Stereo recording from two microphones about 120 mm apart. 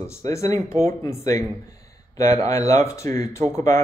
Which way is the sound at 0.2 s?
25° left (ahead or behind).